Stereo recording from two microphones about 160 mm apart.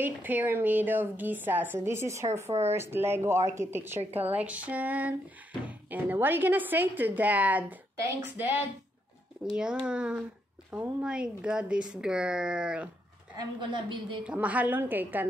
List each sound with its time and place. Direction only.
0.0 s a woman's voice: 10° right (ahead or behind)
13.4 s a woman's voice: 30° right (ahead or behind)
14.2 s a woman's voice: 10° right (ahead or behind)